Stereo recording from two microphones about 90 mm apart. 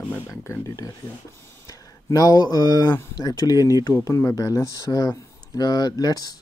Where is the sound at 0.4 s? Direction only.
30° left (ahead or behind).